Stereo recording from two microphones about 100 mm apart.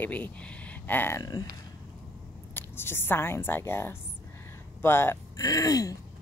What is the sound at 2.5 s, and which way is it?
Speech, 20° left (ahead or behind).